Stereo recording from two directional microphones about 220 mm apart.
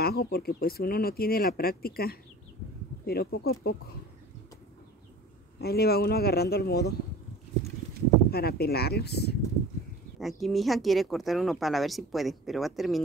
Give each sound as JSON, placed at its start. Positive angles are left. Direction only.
{"t": 0.0, "sound": "speech", "side_deg": 45}
{"t": 5.6, "sound": "speech", "side_deg": 45}
{"t": 8.3, "sound": "speech", "side_deg": 45}
{"t": 10.1, "sound": "speech", "side_deg": 0}